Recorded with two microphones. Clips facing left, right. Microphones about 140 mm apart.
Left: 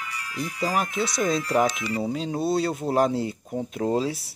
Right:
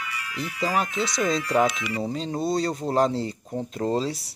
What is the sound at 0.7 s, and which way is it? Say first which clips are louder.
Speech: even; centre (ahead or behind).